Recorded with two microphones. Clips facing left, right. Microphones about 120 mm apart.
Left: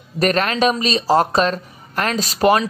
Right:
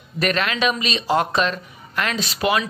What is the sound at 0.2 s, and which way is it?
Speech, 40° left (ahead or behind).